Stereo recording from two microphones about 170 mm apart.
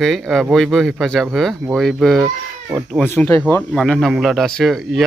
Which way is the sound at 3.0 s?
15° left (ahead or behind).